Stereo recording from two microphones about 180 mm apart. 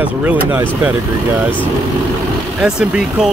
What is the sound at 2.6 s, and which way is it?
Speech, 5° right (ahead or behind).